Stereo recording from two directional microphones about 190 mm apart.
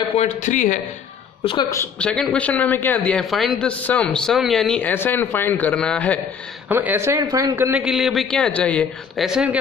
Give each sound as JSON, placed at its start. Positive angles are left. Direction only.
{"t": 0.2, "sound": "a man's voice", "side_deg": 40}
{"t": 1.4, "sound": "a woman's voice", "side_deg": 25}
{"t": 1.7, "sound": "a woman's voice", "side_deg": 10}
{"t": 6.7, "sound": "a man's voice", "side_deg": -10}